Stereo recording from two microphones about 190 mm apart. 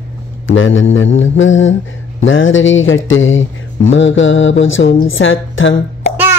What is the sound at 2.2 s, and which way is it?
Speech, 90° left.